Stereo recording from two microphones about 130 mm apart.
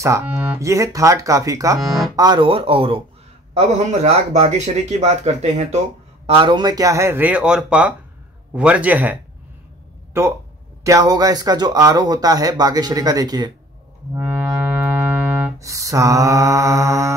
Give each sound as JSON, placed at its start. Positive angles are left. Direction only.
{"t": 0.0, "sound": "speech", "side_deg": -20}
{"t": 1.8, "sound": "speech", "side_deg": 0}
{"t": 2.1, "sound": "speech", "side_deg": -35}
{"t": 3.5, "sound": "a man's voice", "side_deg": -60}
{"t": 6.2, "sound": "a man's voice", "side_deg": -40}
{"t": 14.1, "sound": "music", "side_deg": -15}
{"t": 15.6, "sound": "speech", "side_deg": -25}